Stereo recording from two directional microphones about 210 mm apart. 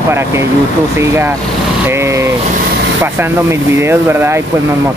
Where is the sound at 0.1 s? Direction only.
10° right (ahead or behind).